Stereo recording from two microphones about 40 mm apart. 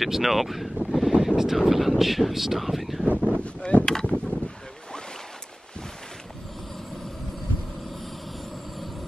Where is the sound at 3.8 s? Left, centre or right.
Centre.